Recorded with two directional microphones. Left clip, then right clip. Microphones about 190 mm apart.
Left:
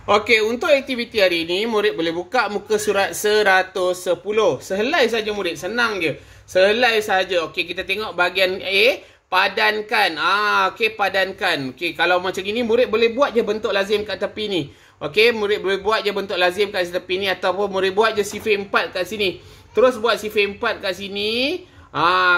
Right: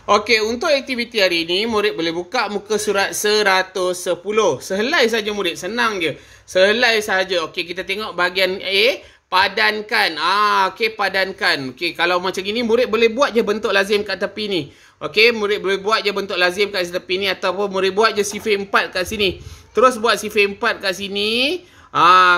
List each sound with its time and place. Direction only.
0.0 s speech: 10° right (ahead or behind)